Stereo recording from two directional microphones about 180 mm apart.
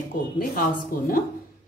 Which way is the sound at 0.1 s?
50° left (ahead or behind).